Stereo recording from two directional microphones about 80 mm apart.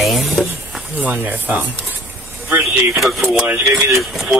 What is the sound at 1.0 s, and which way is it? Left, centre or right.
Speech, centre.